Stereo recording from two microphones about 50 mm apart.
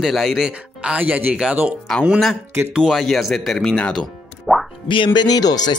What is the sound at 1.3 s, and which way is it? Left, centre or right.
Speech, centre.